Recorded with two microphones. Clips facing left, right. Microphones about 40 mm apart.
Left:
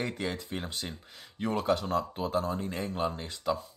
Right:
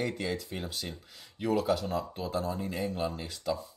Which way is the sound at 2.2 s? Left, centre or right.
Left.